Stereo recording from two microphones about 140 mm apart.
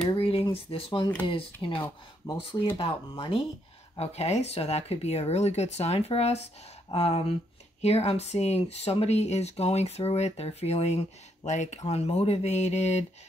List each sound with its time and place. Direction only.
0.1 s a sound: 40° left (ahead or behind)
1.2 s speech: 40° left (ahead or behind)
1.8 s speech: 20° left (ahead or behind)
3.9 s speech: 45° left (ahead or behind)